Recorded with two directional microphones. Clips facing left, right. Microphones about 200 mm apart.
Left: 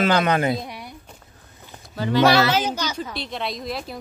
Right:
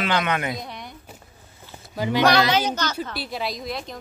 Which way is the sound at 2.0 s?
15° right (ahead or behind).